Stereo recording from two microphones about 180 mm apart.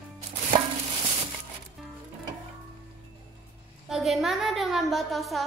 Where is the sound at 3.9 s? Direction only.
Centre (ahead or behind).